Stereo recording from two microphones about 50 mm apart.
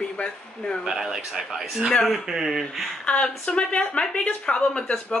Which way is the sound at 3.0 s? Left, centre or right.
Left.